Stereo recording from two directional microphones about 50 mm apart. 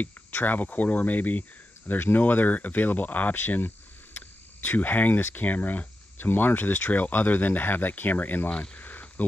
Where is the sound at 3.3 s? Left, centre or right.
Left.